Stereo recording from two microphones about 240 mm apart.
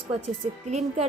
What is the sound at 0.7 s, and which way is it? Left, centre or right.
Speech, right.